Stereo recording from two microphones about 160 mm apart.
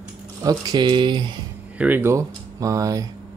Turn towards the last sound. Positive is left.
turn(degrees=-20)  # may be behind; listen again after turning